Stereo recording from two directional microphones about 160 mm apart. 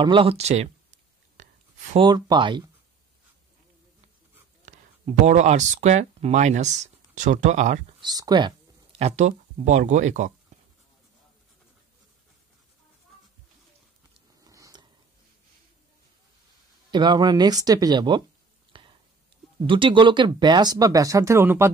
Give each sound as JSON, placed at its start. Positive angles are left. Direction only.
{"t": 0.0, "sound": "speech", "side_deg": -30}
{"t": 1.3, "sound": "whispering", "side_deg": -50}
{"t": 2.0, "sound": "speech", "side_deg": -25}
{"t": 4.6, "sound": "speech", "side_deg": -45}
{"t": 8.0, "sound": "speech", "side_deg": -25}
{"t": 14.4, "sound": "a sound", "side_deg": -20}
{"t": 16.9, "sound": "speech", "side_deg": -30}
{"t": 18.7, "sound": "a sound", "side_deg": -30}
{"t": 19.6, "sound": "speech", "side_deg": -30}